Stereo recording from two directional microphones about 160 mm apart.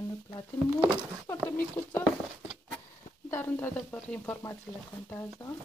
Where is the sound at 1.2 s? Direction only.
10° left (ahead or behind).